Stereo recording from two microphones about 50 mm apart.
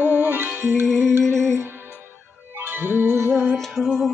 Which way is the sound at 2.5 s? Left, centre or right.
Right.